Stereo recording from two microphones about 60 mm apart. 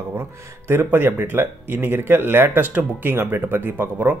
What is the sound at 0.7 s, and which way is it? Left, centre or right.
Speech, right.